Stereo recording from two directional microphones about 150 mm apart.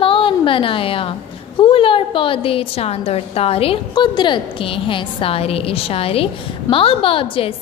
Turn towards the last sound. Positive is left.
turn(degrees=35)  # may be behind; listen again after turning